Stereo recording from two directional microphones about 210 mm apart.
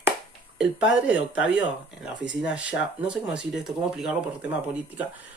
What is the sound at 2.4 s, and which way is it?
Speech, 5° right (ahead or behind).